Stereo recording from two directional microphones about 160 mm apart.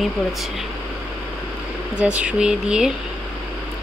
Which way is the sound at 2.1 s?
5° right (ahead or behind).